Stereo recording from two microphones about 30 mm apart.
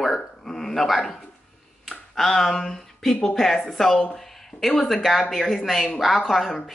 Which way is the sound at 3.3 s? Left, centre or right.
Centre.